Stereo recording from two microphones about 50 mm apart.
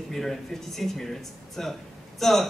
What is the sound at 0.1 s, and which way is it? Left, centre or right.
A man's voice, centre.